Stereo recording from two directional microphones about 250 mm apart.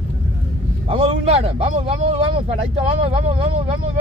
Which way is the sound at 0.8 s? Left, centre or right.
Right.